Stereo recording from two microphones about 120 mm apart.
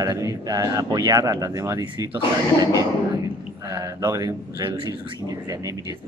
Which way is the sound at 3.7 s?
30° right (ahead or behind).